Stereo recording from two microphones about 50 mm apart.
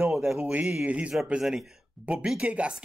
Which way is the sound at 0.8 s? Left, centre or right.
Right.